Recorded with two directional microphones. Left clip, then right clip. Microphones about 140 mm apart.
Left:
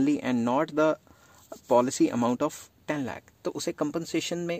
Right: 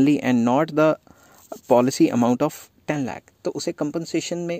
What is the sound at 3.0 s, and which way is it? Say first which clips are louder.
Speech: right 5 dB; 30° right (ahead or behind).